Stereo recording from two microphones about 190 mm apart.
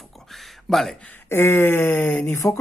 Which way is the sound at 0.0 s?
Centre (ahead or behind).